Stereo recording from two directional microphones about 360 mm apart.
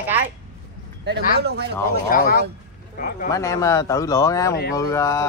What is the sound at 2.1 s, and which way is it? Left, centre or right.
Speech, left.